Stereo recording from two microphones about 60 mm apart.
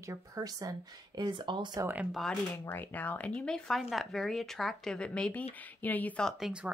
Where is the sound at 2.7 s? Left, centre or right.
Left; by 3.6 s centre.